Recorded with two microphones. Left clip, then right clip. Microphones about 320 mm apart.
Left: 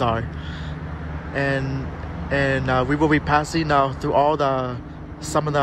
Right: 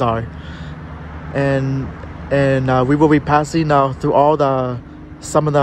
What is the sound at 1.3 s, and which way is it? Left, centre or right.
Speech, centre.